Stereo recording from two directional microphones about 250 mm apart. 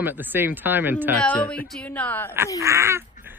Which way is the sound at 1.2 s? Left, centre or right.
Centre.